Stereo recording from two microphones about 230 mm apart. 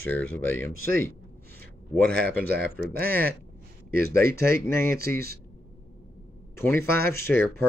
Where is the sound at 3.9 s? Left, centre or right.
Right.